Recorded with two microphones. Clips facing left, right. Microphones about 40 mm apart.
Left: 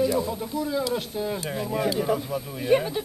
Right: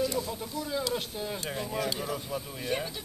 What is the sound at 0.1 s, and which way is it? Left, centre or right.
Speech, centre.